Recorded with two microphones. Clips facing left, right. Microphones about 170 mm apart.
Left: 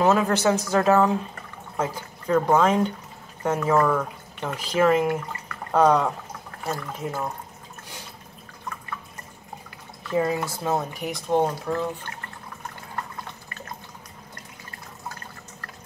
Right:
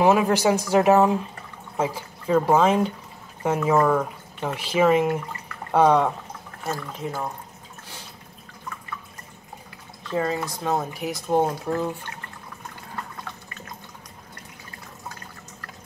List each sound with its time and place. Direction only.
0.0 s speech: 10° right (ahead or behind)
10.1 s speech: 10° left (ahead or behind); by 11.7 s 5° right (ahead or behind)